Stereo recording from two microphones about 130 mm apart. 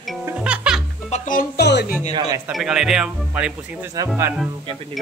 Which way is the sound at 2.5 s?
5° right (ahead or behind).